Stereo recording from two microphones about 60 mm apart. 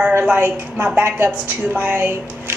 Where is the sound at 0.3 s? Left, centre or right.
Right.